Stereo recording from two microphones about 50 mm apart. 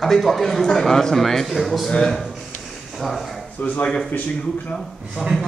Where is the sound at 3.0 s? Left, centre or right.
Centre.